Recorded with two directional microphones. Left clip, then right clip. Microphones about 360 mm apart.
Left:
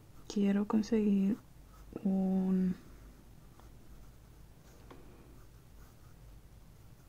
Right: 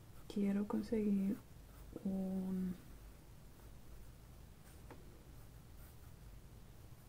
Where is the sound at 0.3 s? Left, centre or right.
Centre.